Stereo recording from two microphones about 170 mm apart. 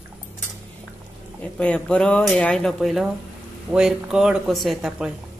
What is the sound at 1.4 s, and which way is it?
Speech, 5° left (ahead or behind).